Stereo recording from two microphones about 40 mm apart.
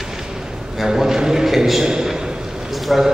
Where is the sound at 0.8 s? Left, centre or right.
Centre.